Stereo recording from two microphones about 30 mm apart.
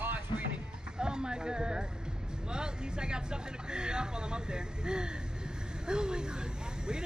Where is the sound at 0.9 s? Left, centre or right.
Right.